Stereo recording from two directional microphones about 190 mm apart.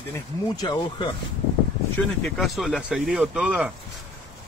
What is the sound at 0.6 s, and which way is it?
Speech, 25° left (ahead or behind).